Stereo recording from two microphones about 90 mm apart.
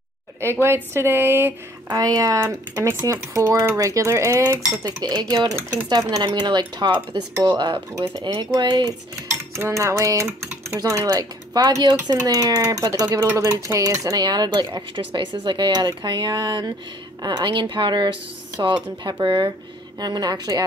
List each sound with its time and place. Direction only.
0.4 s a woman's voice: 30° right (ahead or behind)
1.9 s speech: 45° right (ahead or behind)
4.8 s speech: 50° right (ahead or behind)
9.3 s cutlery: 30° right (ahead or behind)
10.2 s speech: 25° right (ahead or behind)
10.8 s speech: 40° right (ahead or behind)